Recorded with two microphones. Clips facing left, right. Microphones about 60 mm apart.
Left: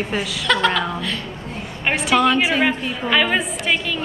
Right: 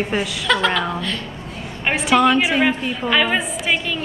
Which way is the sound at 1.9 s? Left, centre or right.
Centre.